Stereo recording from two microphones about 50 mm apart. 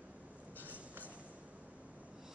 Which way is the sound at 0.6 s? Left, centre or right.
Right.